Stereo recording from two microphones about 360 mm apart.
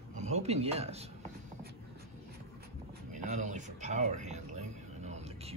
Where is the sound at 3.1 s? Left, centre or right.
Centre.